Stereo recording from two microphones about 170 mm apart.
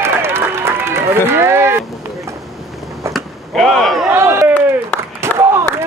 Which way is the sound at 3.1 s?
Centre (ahead or behind).